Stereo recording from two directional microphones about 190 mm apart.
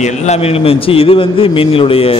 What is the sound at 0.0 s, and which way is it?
A man's voice, 35° left (ahead or behind).